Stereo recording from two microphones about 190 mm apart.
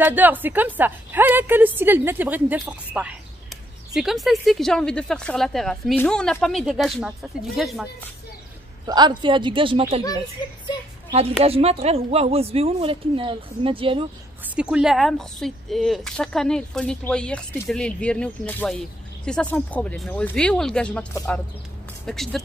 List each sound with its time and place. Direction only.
0.0 s a woman's voice: 10° right (ahead or behind)
8.8 s speech: 25° right (ahead or behind)
11.4 s speech: 30° right (ahead or behind)
14.4 s speech: 5° right (ahead or behind)